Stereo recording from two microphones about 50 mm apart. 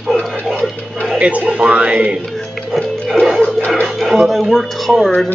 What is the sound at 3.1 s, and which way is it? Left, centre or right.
Music, centre.